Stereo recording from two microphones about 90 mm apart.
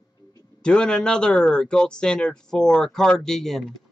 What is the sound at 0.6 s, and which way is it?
Speech, 10° left (ahead or behind).